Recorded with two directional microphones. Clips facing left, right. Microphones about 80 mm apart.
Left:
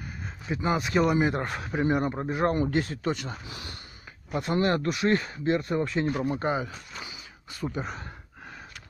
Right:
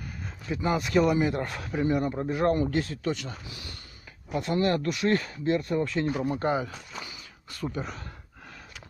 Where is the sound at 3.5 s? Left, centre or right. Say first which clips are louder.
Left 2 dB; left.